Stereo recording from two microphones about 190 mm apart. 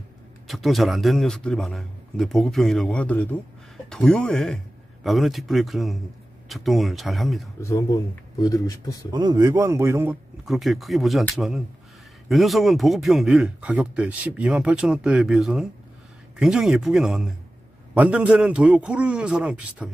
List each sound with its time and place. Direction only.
0.5 s speech: centre (ahead or behind)
7.6 s speech: 15° left (ahead or behind)
9.1 s a man's voice: 20° right (ahead or behind)
10.4 s a man's voice: centre (ahead or behind)